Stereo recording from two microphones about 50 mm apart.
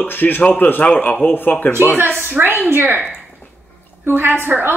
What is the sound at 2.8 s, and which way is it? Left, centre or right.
Speech, right.